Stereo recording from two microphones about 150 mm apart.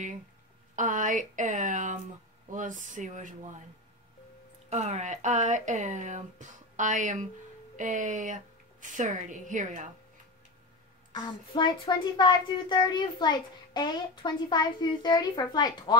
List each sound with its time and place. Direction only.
0.7 s speech: 60° right (ahead or behind)
4.6 s speech: 50° right (ahead or behind)
11.1 s speech: 30° left (ahead or behind)